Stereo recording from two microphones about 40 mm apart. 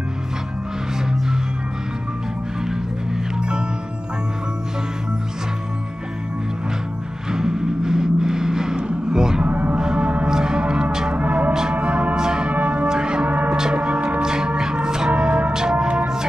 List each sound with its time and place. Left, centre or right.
3.3 s music: right
7.2 s vehicle: centre
9.4 s music: right
9.8 s gong: centre
11.1 s music: right
12.2 s church bell: centre
12.4 s church bell: right
12.8 s a sound: centre
13.6 s gong: right
14.2 s organ: centre
15.0 s music: right